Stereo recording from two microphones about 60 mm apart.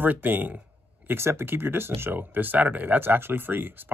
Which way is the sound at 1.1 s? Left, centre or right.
Right.